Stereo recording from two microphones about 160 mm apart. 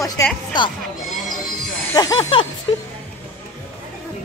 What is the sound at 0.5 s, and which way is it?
Speech, 30° left (ahead or behind).